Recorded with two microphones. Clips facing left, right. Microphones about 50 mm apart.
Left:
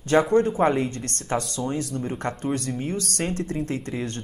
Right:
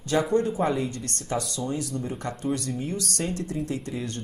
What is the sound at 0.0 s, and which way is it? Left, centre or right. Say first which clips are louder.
Speech: left 4 dB; left.